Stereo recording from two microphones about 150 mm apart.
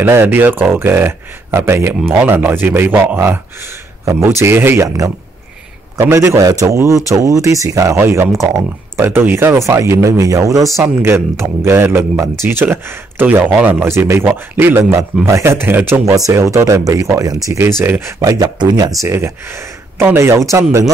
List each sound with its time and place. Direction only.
0.0 s speech: 15° right (ahead or behind)